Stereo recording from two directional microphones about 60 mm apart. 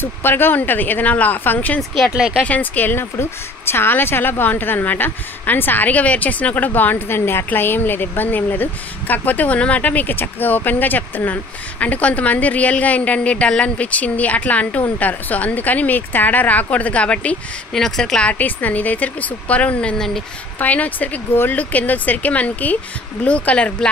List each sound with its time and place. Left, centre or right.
0.0 s a woman's voice: left
2.1 s speech: centre
2.4 s a woman's voice: left
17.7 s speech: centre
18.3 s a woman's voice: left